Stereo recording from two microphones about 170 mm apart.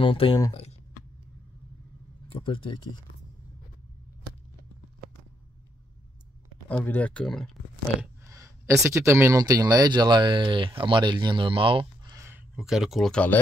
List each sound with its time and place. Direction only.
0.0 s speech: 30° left (ahead or behind)
2.3 s speech: 30° left (ahead or behind)
6.7 s speech: 10° left (ahead or behind)
8.3 s speech: 20° right (ahead or behind)
12.5 s speech: centre (ahead or behind)